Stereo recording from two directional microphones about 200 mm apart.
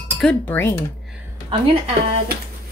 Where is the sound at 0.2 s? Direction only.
5° left (ahead or behind).